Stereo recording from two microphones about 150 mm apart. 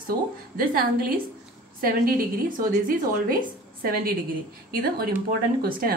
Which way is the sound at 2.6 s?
65° right (ahead or behind).